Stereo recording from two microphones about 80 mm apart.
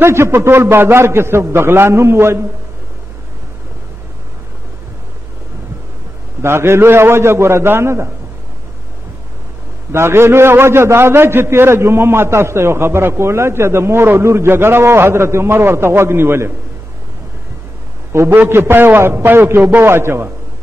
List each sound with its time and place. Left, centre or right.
0.0 s a man's voice: right
6.4 s a man's voice: right
9.9 s a man's voice: right
18.1 s a man's voice: right